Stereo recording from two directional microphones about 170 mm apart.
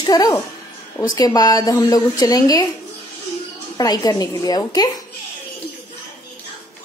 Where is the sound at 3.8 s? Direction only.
20° left (ahead or behind).